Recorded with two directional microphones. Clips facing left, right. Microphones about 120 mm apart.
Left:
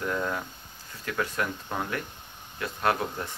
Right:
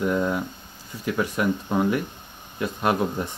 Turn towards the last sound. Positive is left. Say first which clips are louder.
# right 4 dB
turn(degrees=-15)  # may be behind; listen again after turning